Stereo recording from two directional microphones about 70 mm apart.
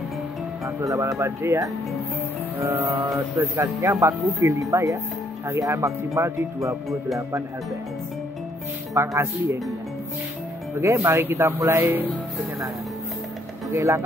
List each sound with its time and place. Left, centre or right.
0.7 s speech: right
2.6 s mantra: right
3.1 s speech: right
8.9 s speech: right
10.8 s speech: right
13.7 s speech: right